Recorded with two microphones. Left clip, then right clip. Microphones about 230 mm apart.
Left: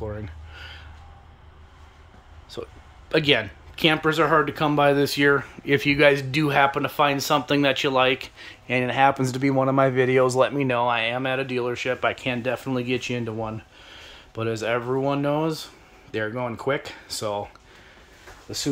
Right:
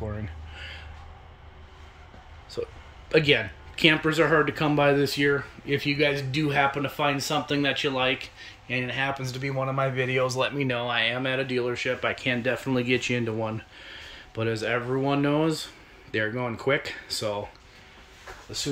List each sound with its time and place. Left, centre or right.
0.2 s a sound: centre
2.5 s speech: centre
9.2 s speech: left; by 17.4 s centre
18.6 s speech: left